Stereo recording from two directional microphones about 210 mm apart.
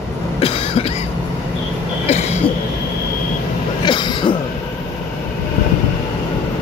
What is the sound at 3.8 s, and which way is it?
Throat clearing, 20° left (ahead or behind).